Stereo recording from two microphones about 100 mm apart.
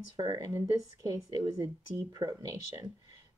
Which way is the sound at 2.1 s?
40° right (ahead or behind).